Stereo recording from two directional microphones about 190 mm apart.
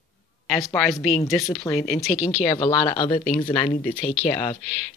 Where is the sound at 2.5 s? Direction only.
15° left (ahead or behind).